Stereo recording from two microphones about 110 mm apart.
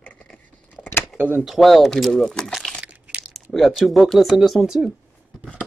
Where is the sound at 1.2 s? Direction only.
15° right (ahead or behind).